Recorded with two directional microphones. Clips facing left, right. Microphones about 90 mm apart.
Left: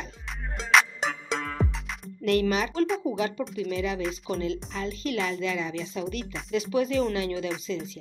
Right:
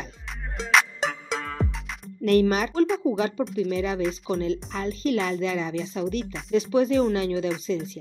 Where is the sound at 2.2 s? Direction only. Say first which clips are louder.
Right 4 dB; 40° right (ahead or behind).